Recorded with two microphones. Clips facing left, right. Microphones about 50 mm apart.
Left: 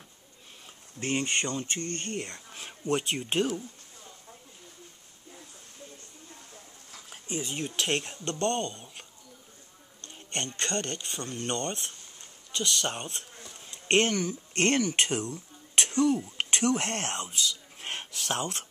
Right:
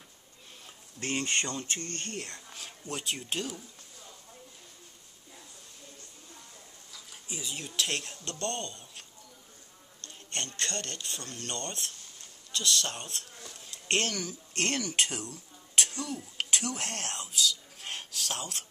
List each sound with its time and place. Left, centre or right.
1.0 s speech: left
6.9 s a sound: left
7.5 s speech: left
10.0 s speech: left
13.4 s insect: centre
16.3 s speech: left